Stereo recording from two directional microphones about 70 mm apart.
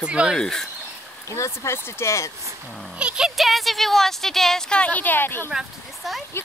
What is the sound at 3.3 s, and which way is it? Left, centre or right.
Speech, centre.